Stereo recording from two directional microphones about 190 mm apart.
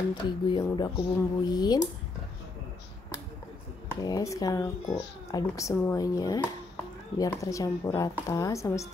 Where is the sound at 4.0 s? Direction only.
15° left (ahead or behind).